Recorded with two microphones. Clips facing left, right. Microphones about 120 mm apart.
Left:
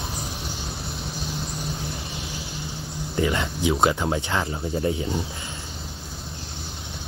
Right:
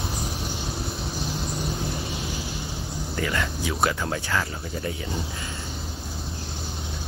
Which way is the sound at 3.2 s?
20° left (ahead or behind).